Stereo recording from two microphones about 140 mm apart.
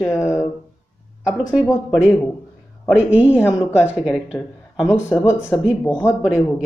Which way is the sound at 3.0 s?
10° right (ahead or behind).